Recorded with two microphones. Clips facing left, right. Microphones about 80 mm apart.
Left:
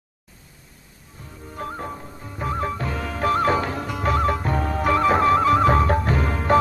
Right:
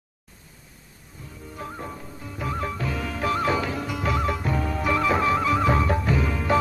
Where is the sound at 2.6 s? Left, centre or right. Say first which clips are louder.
Left 2 dB; left.